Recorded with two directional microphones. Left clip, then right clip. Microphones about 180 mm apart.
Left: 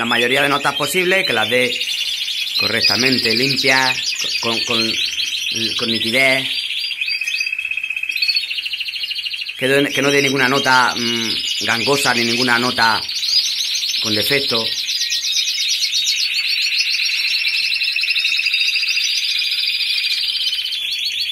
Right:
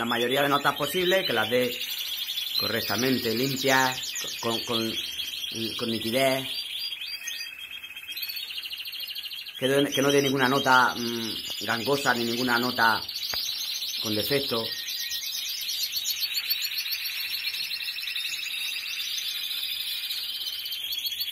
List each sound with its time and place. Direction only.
0.1 s speech: 10° left (ahead or behind)
6.1 s speech: 5° left (ahead or behind)
9.7 s speech: 5° left (ahead or behind)
14.1 s speech: 5° left (ahead or behind)